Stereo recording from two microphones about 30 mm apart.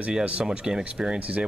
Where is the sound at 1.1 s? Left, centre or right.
Right.